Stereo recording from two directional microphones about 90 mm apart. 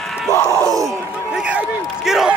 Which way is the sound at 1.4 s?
10° right (ahead or behind).